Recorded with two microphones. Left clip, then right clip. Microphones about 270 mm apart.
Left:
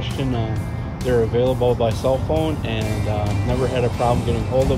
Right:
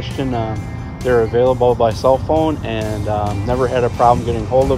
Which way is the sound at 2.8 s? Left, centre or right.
Centre.